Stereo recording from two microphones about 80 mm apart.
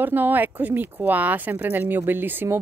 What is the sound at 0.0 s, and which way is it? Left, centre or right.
Speech, right.